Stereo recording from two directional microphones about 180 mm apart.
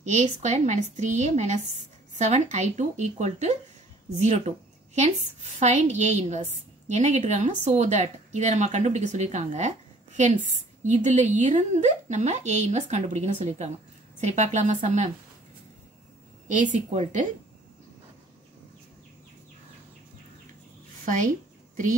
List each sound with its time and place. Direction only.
0.0 s a woman's voice: 40° right (ahead or behind)
16.4 s speech: 40° right (ahead or behind)
21.0 s a sound: 45° right (ahead or behind)